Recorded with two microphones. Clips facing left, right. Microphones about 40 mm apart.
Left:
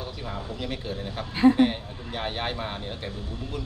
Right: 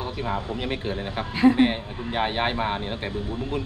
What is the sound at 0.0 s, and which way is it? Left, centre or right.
Speech, right.